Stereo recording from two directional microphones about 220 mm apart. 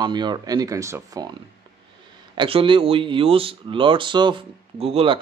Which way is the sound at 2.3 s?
25° right (ahead or behind).